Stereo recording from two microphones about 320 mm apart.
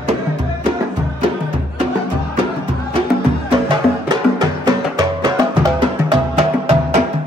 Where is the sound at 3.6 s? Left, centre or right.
Centre.